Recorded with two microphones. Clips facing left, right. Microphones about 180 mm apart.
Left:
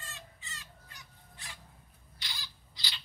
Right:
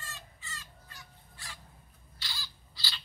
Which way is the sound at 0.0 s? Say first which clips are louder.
Right 1 dB; 20° left (ahead or behind).